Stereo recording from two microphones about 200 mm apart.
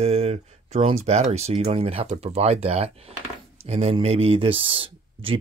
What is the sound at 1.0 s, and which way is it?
Speech, 35° right (ahead or behind).